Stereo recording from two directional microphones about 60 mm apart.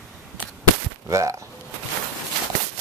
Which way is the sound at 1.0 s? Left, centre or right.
Right.